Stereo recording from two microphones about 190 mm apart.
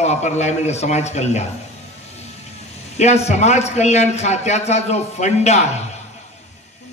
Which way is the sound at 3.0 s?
35° left (ahead or behind).